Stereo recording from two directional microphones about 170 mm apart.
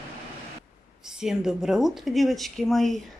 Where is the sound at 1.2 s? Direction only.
5° right (ahead or behind).